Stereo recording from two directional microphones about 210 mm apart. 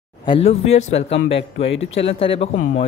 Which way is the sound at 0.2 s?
25° left (ahead or behind).